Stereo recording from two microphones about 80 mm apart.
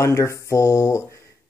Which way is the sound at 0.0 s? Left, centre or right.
Left.